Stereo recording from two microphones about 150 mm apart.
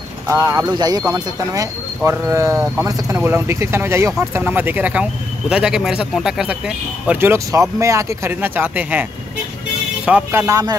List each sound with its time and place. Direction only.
0.3 s speech: 20° right (ahead or behind); by 6.5 s 5° right (ahead or behind)
7.1 s speech: 15° right (ahead or behind)
10.0 s speech: 5° right (ahead or behind)
10.4 s speech: 20° right (ahead or behind)